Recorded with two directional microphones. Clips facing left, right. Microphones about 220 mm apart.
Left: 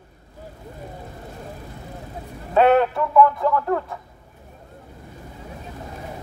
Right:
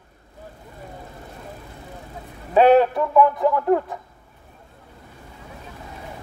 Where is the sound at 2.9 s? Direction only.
20° right (ahead or behind).